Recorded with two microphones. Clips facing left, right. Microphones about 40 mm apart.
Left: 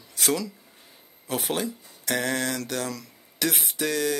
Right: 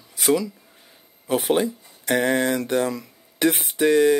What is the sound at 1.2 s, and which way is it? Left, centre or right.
Speech, centre.